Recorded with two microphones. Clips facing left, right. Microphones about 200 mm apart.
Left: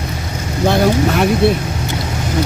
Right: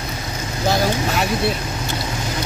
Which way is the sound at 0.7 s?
60° left (ahead or behind).